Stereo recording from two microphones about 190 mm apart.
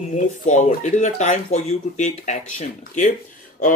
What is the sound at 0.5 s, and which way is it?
Speech, 40° left (ahead or behind).